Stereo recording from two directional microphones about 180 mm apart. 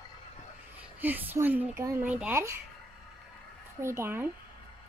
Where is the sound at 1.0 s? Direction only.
10° right (ahead or behind).